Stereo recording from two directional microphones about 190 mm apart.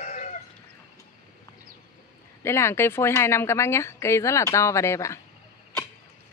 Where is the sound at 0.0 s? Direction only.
40° left (ahead or behind).